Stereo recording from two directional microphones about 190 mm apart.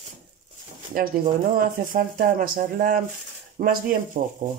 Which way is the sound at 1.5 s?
50° right (ahead or behind).